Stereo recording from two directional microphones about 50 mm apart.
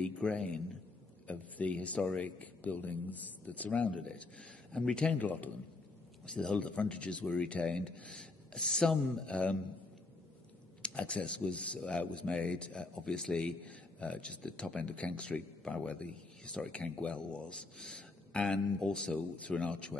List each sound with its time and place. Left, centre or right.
0.0 s speech: left
3.9 s a man's voice: centre
5.1 s a man's voice: left
6.2 s speech: left
10.8 s speech: left
13.7 s a man's voice: left